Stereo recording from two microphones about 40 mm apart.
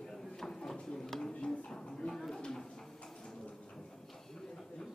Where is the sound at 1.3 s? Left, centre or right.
Left.